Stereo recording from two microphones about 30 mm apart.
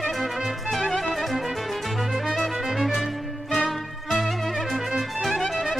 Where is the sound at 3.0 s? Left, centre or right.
Centre.